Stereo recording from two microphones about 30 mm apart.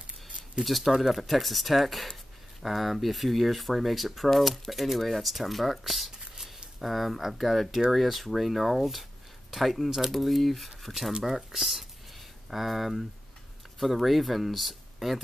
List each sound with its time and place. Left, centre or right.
0.7 s speech: centre
9.8 s speech: centre
10.1 s speech: centre